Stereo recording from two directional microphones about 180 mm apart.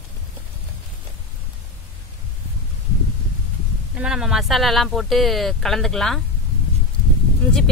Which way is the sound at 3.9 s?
5° right (ahead or behind).